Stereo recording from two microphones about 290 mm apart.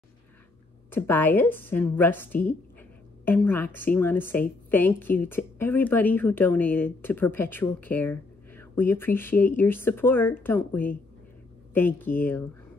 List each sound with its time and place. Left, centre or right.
0.9 s a woman's voice: centre